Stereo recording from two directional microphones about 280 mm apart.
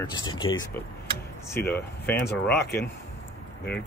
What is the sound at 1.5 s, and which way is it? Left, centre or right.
Speech, centre.